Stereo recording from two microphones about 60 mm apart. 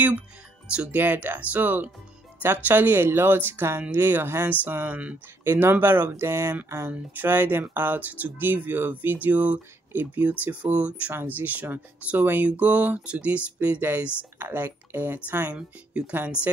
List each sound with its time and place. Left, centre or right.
0.7 s speech: centre
1.0 s speech: right
6.9 s speech: right
15.5 s speech: centre